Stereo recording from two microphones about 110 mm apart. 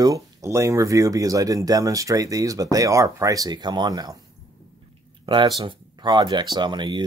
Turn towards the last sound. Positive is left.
turn(degrees=-45)  # may be behind; listen again after turning